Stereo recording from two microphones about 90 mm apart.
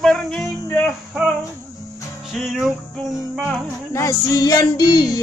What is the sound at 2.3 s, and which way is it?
Music, 5° right (ahead or behind).